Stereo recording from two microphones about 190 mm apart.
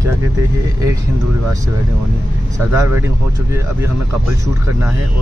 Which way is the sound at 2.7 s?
15° right (ahead or behind).